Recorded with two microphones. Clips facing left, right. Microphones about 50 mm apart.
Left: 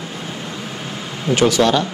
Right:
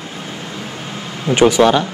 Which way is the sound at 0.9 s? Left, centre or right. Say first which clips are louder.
Right 1 dB; centre.